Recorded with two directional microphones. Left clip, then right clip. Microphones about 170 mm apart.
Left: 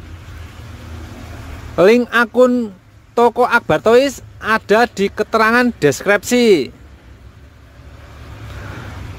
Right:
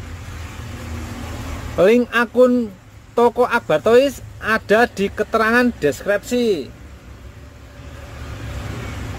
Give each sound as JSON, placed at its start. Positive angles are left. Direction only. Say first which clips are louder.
{"t": 1.8, "sound": "speech", "louder": "left 3 dB", "side_deg": 20}